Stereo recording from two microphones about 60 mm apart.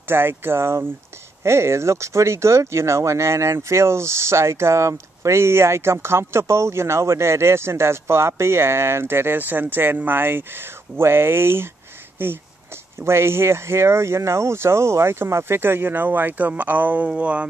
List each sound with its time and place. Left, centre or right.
0.1 s speech: right
13.0 s speech: right